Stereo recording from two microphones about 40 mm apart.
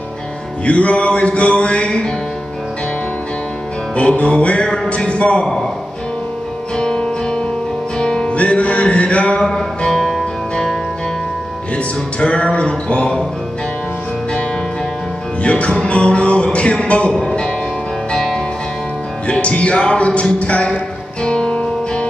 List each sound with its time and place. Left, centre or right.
0.7 s music: left
3.9 s music: left
6.8 s music: centre
8.3 s music: left
9.4 s music: centre
11.7 s music: left
15.4 s music: left
17.1 s music: centre
19.2 s music: left
21.2 s music: left